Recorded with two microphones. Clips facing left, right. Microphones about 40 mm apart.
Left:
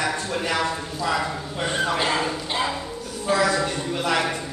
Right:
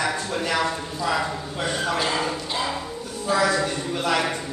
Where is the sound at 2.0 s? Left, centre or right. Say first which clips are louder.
Left 1 dB; centre.